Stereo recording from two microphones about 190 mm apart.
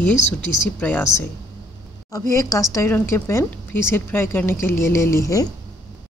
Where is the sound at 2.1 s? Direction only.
15° left (ahead or behind).